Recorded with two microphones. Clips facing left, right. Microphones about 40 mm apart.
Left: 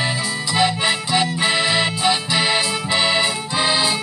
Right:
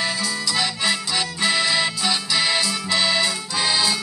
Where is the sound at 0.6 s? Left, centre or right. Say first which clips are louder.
Left 6 dB; left.